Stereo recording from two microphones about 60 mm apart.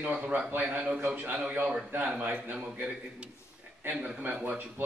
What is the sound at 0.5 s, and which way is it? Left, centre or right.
A man's voice, right.